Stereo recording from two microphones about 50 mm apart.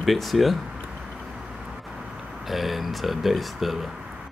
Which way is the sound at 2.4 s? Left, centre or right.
Centre.